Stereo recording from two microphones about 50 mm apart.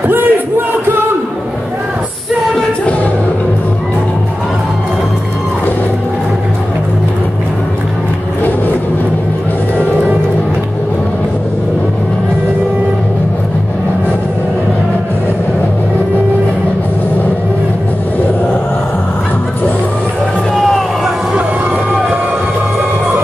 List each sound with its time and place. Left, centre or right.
0.0 s crowd: right
20.5 s music: centre